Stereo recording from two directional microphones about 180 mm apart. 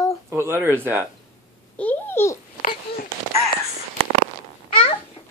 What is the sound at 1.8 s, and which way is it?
Babbling, 10° left (ahead or behind).